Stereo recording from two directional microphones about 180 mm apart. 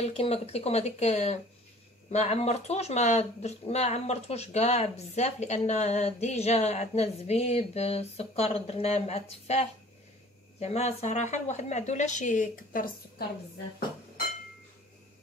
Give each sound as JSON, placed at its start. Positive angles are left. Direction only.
{"t": 0.0, "sound": "speech", "side_deg": 35}